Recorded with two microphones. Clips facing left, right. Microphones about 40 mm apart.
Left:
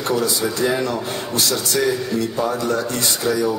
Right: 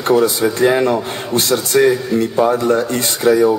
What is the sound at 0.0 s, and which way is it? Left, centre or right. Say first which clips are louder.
Speech: right 7 dB; right.